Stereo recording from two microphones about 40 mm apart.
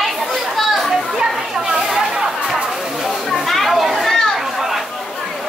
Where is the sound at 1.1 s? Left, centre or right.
Centre.